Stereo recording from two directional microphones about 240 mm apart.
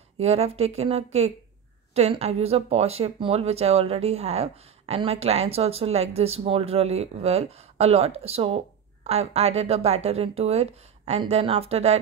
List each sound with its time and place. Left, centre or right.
0.2 s speech: right